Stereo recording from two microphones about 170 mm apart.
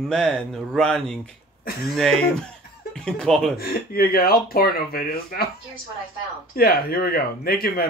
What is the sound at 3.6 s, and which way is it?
Speech, 60° left (ahead or behind).